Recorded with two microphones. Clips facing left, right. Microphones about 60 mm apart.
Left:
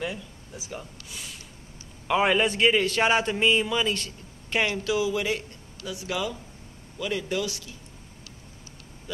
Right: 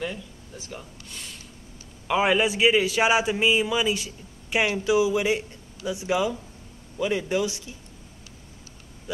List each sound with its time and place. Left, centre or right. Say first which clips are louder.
0.0 s a man's voice: right 1 dB; centre; by 7.7 s right